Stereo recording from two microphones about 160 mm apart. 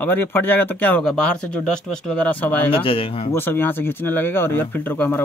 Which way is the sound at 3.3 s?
15° left (ahead or behind).